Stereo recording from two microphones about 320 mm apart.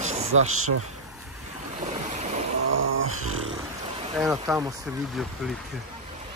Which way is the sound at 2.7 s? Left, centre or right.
Right.